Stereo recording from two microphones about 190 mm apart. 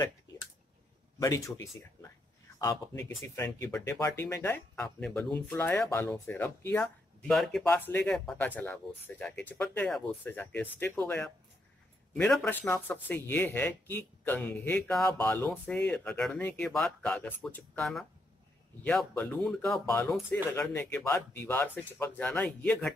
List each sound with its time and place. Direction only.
1.2 s speech: 15° left (ahead or behind)